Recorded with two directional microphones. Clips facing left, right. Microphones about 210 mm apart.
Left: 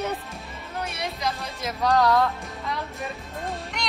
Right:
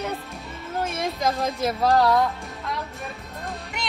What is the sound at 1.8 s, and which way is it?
Speech, 30° right (ahead or behind).